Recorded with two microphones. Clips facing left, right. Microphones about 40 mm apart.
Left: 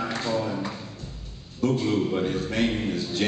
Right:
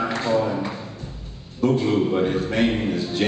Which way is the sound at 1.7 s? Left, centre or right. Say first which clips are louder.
Right 4 dB; centre.